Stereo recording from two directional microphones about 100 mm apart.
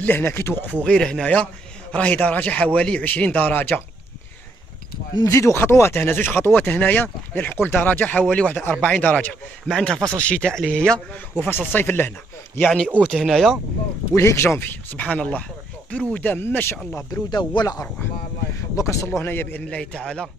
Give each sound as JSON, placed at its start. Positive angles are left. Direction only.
{"t": 0.0, "sound": "speech", "side_deg": 20}
{"t": 0.8, "sound": "a man's voice", "side_deg": 5}
{"t": 5.3, "sound": "a man's voice", "side_deg": 25}
{"t": 9.7, "sound": "a man's voice", "side_deg": 5}
{"t": 12.6, "sound": "a man's voice", "side_deg": 5}
{"t": 14.1, "sound": "a man's voice", "side_deg": 30}
{"t": 17.3, "sound": "speech", "side_deg": 45}